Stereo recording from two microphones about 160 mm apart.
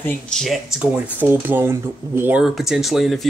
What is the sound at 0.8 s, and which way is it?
Speech, 10° right (ahead or behind).